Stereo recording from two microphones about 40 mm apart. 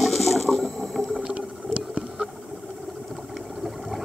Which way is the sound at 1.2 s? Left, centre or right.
Right.